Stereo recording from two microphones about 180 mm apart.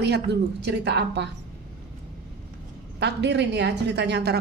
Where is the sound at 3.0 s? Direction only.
70° right (ahead or behind).